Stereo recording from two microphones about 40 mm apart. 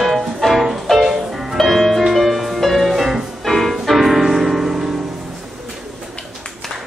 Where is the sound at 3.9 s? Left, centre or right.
Centre.